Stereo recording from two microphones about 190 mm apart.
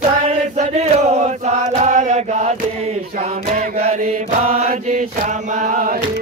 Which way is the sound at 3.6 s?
35° right (ahead or behind).